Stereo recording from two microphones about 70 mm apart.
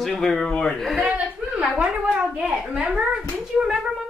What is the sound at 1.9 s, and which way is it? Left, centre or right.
Speech, centre.